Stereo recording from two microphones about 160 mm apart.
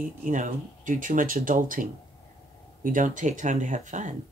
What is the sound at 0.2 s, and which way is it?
Speech, 55° right (ahead or behind).